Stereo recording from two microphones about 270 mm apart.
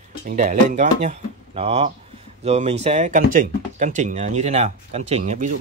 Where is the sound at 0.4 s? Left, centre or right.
Right.